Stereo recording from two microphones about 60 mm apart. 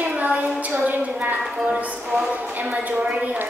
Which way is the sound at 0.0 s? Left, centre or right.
Right.